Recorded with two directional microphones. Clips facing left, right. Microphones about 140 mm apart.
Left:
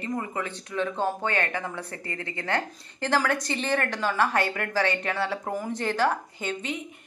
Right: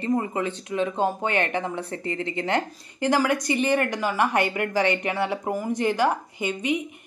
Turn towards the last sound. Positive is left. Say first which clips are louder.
# right 6 dB
turn(degrees=-15)  # may be behind; listen again after turning